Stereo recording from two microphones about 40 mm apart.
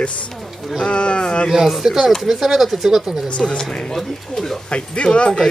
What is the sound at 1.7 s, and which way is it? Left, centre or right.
Speech, centre.